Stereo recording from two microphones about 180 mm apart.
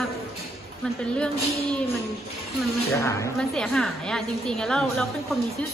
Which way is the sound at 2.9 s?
15° left (ahead or behind).